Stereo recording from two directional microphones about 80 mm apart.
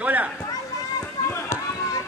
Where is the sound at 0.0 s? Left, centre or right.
Centre.